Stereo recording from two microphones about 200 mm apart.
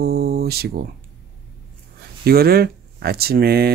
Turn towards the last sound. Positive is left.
turn(degrees=-50)  # may be behind; listen again after turning